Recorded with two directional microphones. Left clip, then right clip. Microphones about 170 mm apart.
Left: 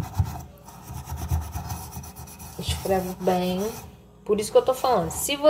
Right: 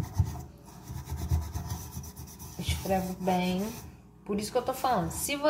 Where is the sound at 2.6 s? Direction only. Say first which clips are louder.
Left 5 dB; 20° left (ahead or behind).